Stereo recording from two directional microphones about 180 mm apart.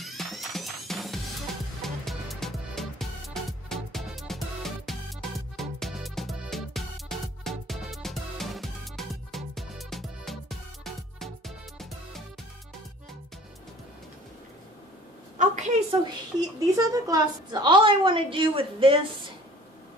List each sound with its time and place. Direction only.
0.0 s music: centre (ahead or behind)
15.3 s a sound: 40° right (ahead or behind)
16.3 s a woman's voice: 20° right (ahead or behind)